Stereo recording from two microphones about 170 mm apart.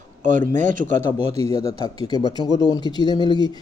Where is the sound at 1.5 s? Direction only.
25° left (ahead or behind).